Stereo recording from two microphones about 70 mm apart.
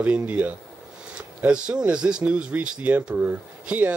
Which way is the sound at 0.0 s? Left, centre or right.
Centre.